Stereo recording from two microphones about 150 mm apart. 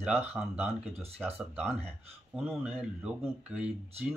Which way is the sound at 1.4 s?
Centre (ahead or behind).